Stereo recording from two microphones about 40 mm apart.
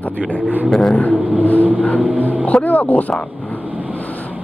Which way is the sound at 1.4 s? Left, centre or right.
Left.